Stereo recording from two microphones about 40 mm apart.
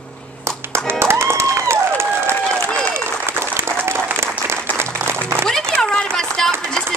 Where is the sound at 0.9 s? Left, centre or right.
Right.